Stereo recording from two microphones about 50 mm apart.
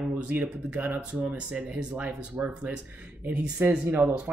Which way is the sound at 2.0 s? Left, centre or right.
Right.